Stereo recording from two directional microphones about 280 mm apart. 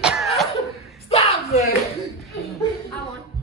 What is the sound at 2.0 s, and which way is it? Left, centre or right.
Chuckle, centre.